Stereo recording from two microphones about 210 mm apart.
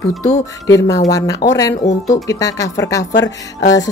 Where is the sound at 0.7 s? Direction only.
15° left (ahead or behind).